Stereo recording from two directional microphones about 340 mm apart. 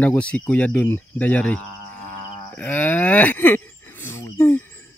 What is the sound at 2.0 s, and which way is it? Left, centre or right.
Livestock, centre.